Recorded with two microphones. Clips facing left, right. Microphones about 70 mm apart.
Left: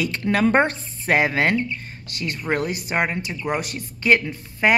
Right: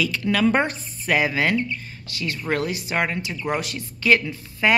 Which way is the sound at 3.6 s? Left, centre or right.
Left.